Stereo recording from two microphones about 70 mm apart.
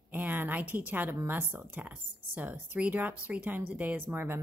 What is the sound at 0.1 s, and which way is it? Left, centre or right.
Speech, right.